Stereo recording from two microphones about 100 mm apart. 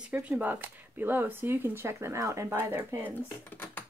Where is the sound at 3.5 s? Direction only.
20° left (ahead or behind).